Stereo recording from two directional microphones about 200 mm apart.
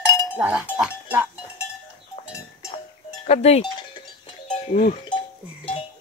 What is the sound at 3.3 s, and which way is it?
Cowbell, 30° left (ahead or behind).